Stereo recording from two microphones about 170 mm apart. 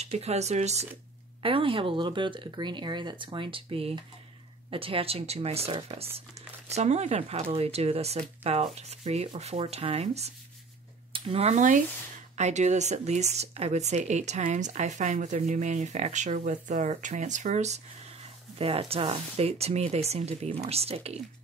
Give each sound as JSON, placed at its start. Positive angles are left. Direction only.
{"t": 0.0, "sound": "speech", "side_deg": -40}